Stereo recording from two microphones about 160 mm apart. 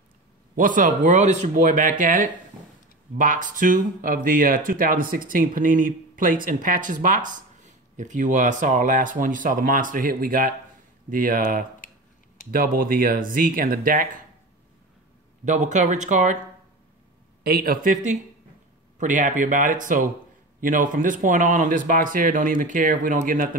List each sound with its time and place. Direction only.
0.6 s speech: 55° right (ahead or behind)
15.4 s speech: 50° right (ahead or behind)
17.4 s a man's voice: 75° right (ahead or behind)
17.9 s speech: 45° right (ahead or behind)